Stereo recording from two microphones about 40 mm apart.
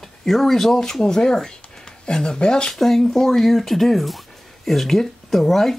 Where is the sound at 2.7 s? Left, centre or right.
Centre.